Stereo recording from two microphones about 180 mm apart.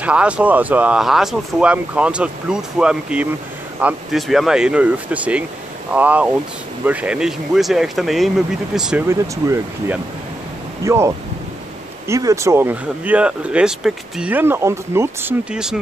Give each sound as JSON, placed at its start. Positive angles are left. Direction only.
{"t": 0.0, "sound": "speech", "side_deg": -5}
{"t": 9.0, "sound": "speech", "side_deg": -15}
{"t": 15.5, "sound": "speech", "side_deg": -5}